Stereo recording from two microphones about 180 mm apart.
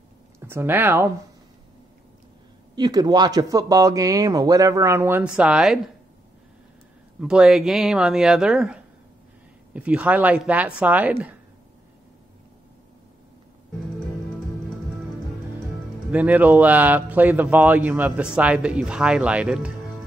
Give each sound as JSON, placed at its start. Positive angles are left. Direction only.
{"t": 0.4, "sound": "speech", "side_deg": -15}
{"t": 2.7, "sound": "speech", "side_deg": -20}
{"t": 7.2, "sound": "speech", "side_deg": -5}
{"t": 9.8, "sound": "speech", "side_deg": -10}
{"t": 16.1, "sound": "speech", "side_deg": -10}